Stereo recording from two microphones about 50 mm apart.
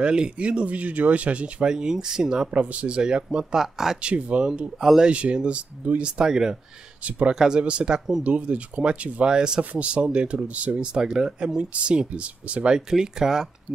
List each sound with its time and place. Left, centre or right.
0.0 s speech: centre
2.5 s speech: right
3.0 s speech: centre
4.0 s speech: right
4.7 s speech: centre
5.1 s speech: right
7.1 s speech: right
7.3 s speech: centre
8.2 s speech: right
9.6 s speech: right
10.9 s speech: centre